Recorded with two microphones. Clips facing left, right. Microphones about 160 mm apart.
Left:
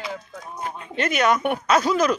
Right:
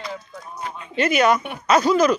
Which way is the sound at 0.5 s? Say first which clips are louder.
Left 1 dB; 45° left (ahead or behind).